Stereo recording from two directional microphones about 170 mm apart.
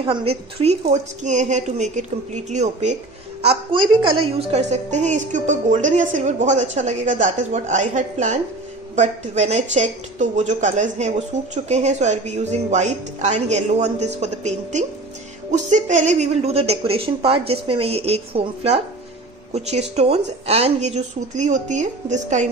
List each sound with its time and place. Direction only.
0.0 s a woman's voice: 30° right (ahead or behind)
3.4 s a woman's voice: 30° right (ahead or behind)
20.0 s a woman's voice: 40° right (ahead or behind)